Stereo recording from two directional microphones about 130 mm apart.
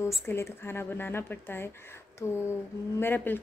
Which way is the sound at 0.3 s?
20° left (ahead or behind).